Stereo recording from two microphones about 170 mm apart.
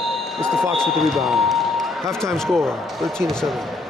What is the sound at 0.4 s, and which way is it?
Speech, 5° left (ahead or behind).